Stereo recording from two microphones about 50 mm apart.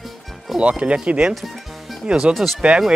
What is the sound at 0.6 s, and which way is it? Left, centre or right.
Speech, right.